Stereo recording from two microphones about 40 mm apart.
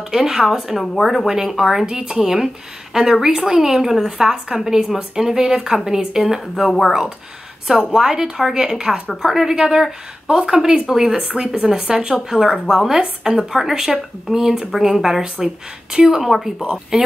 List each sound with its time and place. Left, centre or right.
0.1 s a woman's voice: centre
0.7 s speech: centre
1.2 s a woman's voice: centre
7.9 s a woman's voice: centre
13.5 s speech: centre
14.3 s a woman's voice: centre